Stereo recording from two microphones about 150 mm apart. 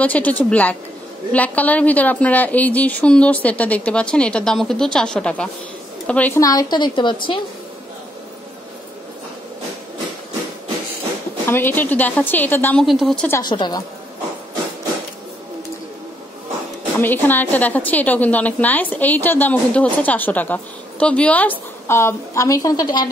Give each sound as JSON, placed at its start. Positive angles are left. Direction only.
{"t": 0.0, "sound": "a woman's voice", "side_deg": 10}
{"t": 6.4, "sound": "a woman's voice", "side_deg": 25}
{"t": 11.4, "sound": "a woman's voice", "side_deg": 15}
{"t": 12.8, "sound": "a woman's voice", "side_deg": 0}
{"t": 13.4, "sound": "a woman's voice", "side_deg": 30}
{"t": 17.0, "sound": "a woman's voice", "side_deg": 15}